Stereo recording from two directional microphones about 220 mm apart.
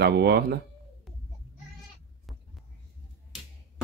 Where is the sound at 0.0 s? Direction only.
50° right (ahead or behind).